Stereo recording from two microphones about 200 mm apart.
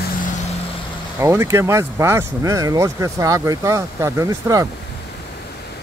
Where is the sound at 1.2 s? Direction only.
15° right (ahead or behind).